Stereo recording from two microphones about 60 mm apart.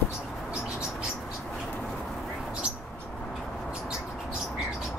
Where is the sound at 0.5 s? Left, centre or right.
Centre.